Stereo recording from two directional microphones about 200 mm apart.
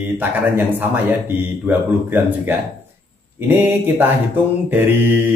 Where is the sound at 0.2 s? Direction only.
10° right (ahead or behind).